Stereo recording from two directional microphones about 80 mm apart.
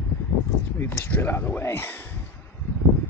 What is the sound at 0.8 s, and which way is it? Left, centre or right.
Speech, left.